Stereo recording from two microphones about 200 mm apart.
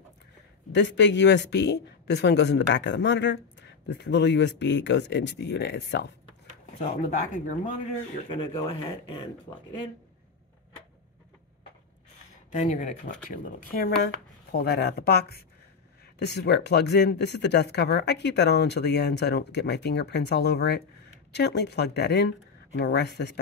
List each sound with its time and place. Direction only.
0.7 s speech: 60° left (ahead or behind)
6.8 s speech: 40° left (ahead or behind)
8.3 s speech: 25° left (ahead or behind)
12.6 s speech: 40° left (ahead or behind); by 23.4 s 55° left (ahead or behind)